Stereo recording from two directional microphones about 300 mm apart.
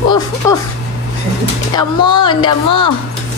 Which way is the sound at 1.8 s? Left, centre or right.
Centre.